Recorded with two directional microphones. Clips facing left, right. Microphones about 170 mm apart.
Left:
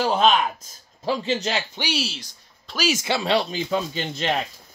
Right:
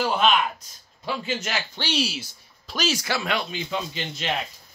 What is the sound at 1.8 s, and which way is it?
Speech, 10° left (ahead or behind).